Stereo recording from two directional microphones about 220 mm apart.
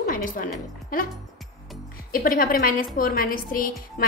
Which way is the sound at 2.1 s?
40° left (ahead or behind).